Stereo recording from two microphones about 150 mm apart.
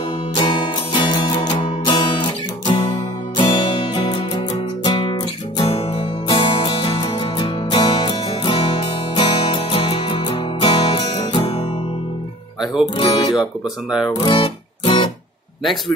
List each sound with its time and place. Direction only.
0.3 s music: 30° left (ahead or behind)
12.9 s guitar: 40° left (ahead or behind)
13.4 s speech: centre (ahead or behind)
14.2 s music: 35° left (ahead or behind)